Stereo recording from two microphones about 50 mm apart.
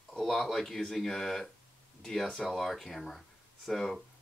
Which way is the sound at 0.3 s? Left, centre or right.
Centre.